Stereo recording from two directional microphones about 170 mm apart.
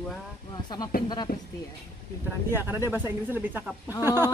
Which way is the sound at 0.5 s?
25° left (ahead or behind).